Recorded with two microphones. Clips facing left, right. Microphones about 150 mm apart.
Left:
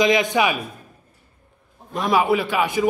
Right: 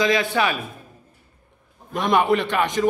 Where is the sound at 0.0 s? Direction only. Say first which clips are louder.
Left 2 dB; 15° left (ahead or behind).